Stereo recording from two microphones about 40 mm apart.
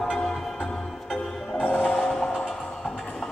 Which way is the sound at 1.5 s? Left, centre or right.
Left.